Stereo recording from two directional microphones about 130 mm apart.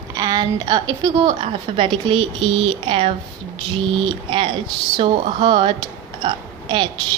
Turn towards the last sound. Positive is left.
turn(degrees=-35)  # may be behind; listen again after turning